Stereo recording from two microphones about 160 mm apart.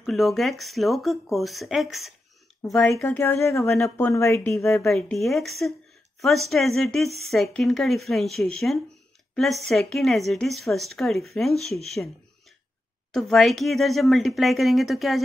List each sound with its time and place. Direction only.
0.0 s speech: centre (ahead or behind); by 4.6 s 15° left (ahead or behind)
4.6 s speech: centre (ahead or behind)
13.1 s speech: centre (ahead or behind)